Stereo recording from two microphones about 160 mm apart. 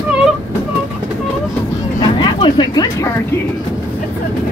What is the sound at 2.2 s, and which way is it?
Speech, 30° left (ahead or behind).